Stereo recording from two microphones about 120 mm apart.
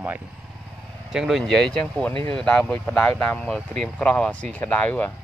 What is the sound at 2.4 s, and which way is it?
Speech, 10° left (ahead or behind).